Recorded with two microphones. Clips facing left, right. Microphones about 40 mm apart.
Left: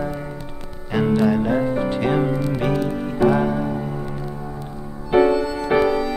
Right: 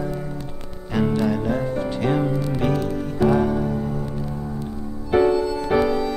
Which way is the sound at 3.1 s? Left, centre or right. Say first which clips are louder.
Left 1 dB; centre.